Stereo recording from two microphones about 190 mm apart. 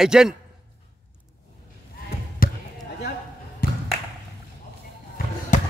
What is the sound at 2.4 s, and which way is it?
Basketball bounce, 50° left (ahead or behind).